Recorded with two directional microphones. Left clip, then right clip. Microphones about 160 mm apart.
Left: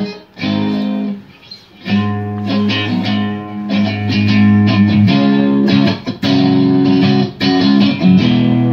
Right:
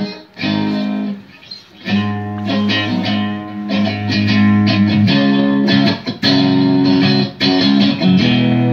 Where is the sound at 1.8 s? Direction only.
20° right (ahead or behind).